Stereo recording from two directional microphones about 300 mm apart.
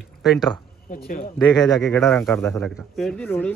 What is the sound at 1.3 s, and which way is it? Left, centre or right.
A man's voice, centre.